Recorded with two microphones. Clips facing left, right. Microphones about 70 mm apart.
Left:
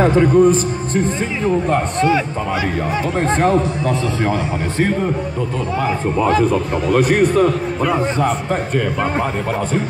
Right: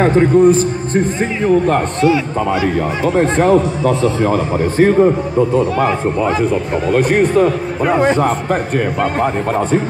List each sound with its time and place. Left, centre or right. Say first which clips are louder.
0.1 s a man's voice: right 2 dB; right
3.2 s speech: right 4 dB; centre
4.2 s a man's voice: right 4 dB; centre
6.2 s speech: left 4 dB; centre
7.0 s a man's voice: right 1 dB; right
7.3 s a man's voice: right 2 dB; centre
9.2 s a man's voice: right 4 dB; right